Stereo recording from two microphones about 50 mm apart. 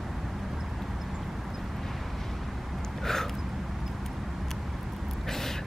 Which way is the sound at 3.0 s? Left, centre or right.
Centre.